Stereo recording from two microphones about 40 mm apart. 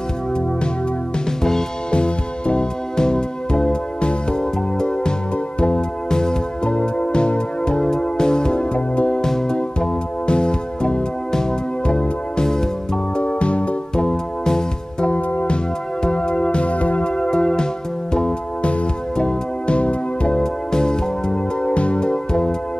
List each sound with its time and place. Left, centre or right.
1.4 s music: centre
9.2 s music: centre; by 13.7 s left
14.4 s music: centre
15.0 s music: left
17.2 s music: centre
20.7 s music: centre